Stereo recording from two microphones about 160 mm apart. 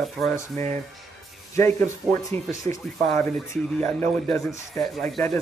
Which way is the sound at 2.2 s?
20° left (ahead or behind).